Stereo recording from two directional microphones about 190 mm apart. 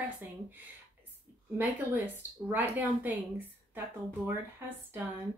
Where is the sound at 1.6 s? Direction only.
10° right (ahead or behind).